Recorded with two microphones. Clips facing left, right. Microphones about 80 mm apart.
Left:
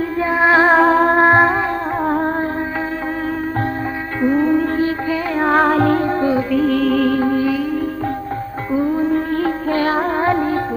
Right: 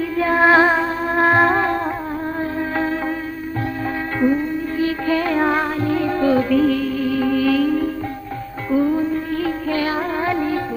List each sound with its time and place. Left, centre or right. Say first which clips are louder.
0.2 s music: right 1 dB; centre
0.7 s music: left 9 dB; left
1.1 s music: left 3 dB; left
2.0 s music: left 7 dB; left
4.4 s music: left 8 dB; left
5.0 s music: right 1 dB; centre
5.5 s music: left 6 dB; left
5.9 s music: left 2 dB; left
6.2 s music: right 1 dB; centre
6.7 s music: left 5 dB; left
7.2 s music: left 2 dB; left
7.4 s music: right 2 dB; centre
8.7 s music: right 1 dB; left
9.0 s music: left 4 dB; left